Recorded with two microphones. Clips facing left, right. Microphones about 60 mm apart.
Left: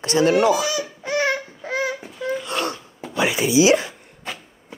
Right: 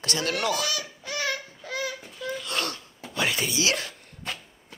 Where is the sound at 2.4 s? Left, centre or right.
Left.